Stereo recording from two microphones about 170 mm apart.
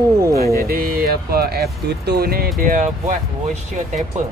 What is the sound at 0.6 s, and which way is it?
Speech, 60° right (ahead or behind).